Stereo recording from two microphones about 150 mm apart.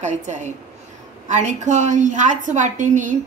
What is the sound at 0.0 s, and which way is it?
A woman's voice, 55° right (ahead or behind).